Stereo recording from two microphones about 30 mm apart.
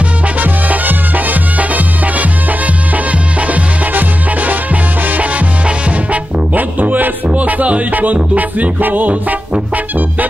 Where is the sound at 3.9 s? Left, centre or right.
Right.